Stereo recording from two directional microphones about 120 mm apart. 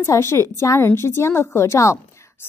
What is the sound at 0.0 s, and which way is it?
A woman's voice, 25° left (ahead or behind).